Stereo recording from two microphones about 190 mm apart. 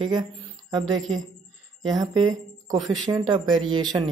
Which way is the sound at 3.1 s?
20° right (ahead or behind).